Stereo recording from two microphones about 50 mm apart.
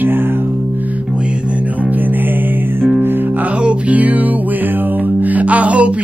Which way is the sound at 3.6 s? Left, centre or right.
Right.